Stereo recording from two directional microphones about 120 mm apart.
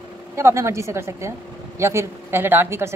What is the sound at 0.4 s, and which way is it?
Speech, 25° right (ahead or behind).